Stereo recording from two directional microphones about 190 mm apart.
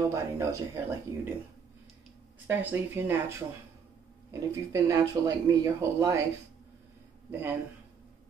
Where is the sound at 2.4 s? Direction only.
10° right (ahead or behind).